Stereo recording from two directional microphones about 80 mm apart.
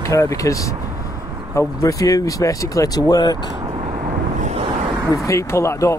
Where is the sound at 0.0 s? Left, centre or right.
Left.